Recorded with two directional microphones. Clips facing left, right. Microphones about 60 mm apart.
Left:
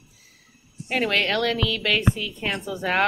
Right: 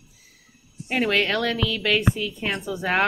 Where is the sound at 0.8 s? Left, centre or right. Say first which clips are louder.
Right 1 dB; centre.